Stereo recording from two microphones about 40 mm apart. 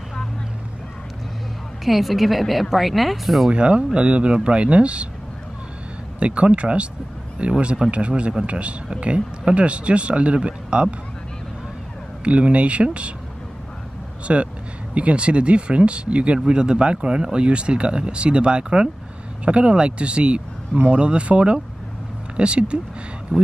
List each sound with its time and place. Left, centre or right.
1.9 s speech: centre
3.4 s speech: right
6.1 s speech: right
12.3 s speech: right
14.2 s speech: right